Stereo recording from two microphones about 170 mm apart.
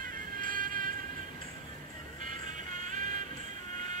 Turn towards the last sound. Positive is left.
turn(degrees=-50)  # may be behind; listen again after turning